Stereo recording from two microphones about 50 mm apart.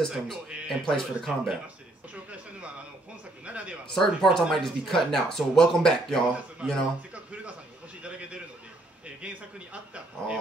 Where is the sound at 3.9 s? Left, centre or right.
Centre.